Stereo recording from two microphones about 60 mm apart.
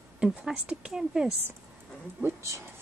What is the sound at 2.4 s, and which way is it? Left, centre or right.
Speech, right.